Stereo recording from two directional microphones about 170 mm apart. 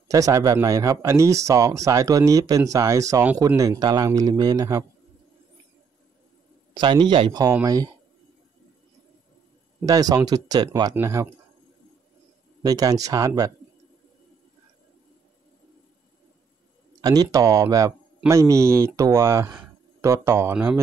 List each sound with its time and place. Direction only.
0.1 s speech: 20° right (ahead or behind)
6.7 s speech: 25° right (ahead or behind)
9.8 s speech: 20° right (ahead or behind)
12.6 s speech: 20° right (ahead or behind)
17.0 s a man's voice: 20° right (ahead or behind)